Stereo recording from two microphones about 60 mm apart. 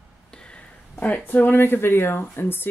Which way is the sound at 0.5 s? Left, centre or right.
Left.